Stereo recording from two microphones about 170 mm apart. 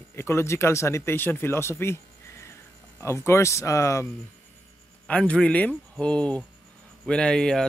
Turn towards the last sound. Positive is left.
turn(degrees=5)  # may be behind; listen again after turning